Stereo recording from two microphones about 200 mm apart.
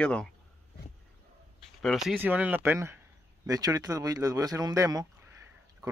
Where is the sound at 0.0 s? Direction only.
5° left (ahead or behind).